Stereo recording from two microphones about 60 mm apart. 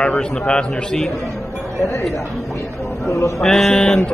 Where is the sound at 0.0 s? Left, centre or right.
Centre.